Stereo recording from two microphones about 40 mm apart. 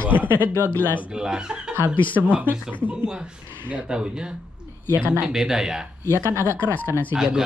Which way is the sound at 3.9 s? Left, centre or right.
Right.